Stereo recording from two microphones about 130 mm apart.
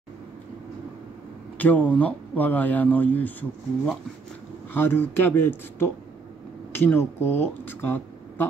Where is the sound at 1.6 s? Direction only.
10° left (ahead or behind).